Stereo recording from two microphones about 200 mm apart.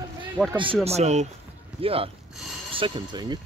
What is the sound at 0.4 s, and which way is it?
Speech, 5° right (ahead or behind).